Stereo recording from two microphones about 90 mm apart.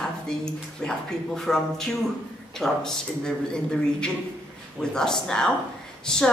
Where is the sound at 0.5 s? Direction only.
5° left (ahead or behind).